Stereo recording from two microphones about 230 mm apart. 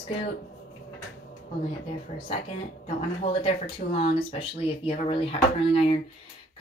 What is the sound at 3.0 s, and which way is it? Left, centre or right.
Speech, left.